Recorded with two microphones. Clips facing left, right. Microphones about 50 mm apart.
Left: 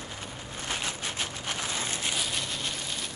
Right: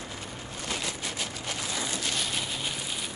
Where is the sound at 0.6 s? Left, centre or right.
Left.